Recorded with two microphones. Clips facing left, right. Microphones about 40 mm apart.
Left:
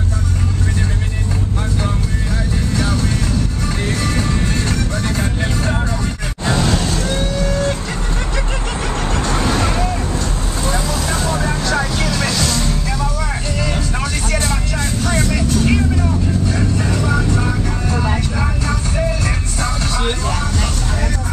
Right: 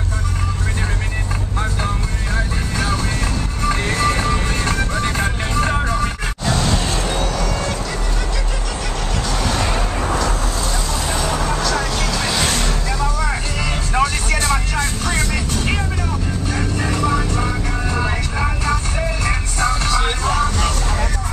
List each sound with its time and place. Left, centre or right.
4.0 s music: right
6.5 s vehicle: centre
6.8 s vehicle: centre
9.1 s vehicle: left
9.4 s vehicle: centre
11.4 s music: centre
12.4 s music: right
15.0 s vehicle: centre
16.5 s music: centre
20.0 s vehicle: centre